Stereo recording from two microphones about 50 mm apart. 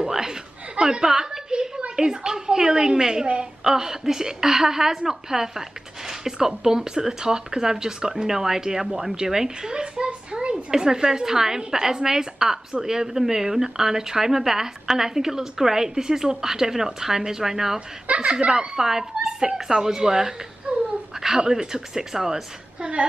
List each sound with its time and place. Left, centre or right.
0.0 s chuckle: centre
2.0 s a woman's voice: centre
17.7 s a woman's voice: right
20.7 s a sound: right
21.1 s a sound: centre
21.4 s a woman's voice: centre